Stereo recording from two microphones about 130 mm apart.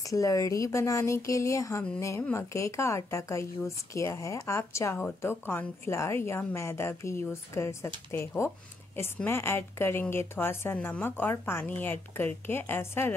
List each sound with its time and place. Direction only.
0.0 s a woman's voice: 25° left (ahead or behind)